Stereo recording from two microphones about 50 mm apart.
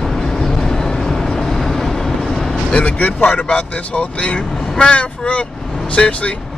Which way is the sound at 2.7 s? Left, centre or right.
Left.